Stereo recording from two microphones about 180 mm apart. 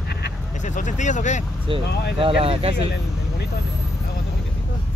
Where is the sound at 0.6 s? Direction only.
45° left (ahead or behind).